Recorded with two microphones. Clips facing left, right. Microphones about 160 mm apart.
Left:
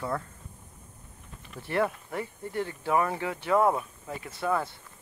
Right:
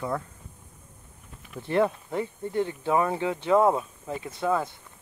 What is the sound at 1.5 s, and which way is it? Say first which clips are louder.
Speech: right 4 dB; 20° right (ahead or behind).